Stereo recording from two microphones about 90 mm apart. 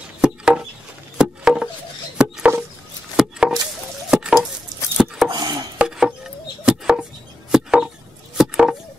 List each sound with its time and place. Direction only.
0.2 s a sound: 10° right (ahead or behind)
3.2 s chopping: 10° right (ahead or behind)
4.1 s stir: 5° right (ahead or behind)
4.9 s chopping: 5° right (ahead or behind)
5.3 s chopping: 55° right (ahead or behind)
5.8 s a sound: 10° right (ahead or behind)
6.6 s chopping: 10° right (ahead or behind)
7.5 s chop: 5° right (ahead or behind)